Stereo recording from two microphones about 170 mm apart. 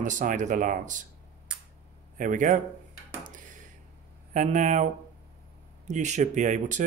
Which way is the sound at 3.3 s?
50° right (ahead or behind).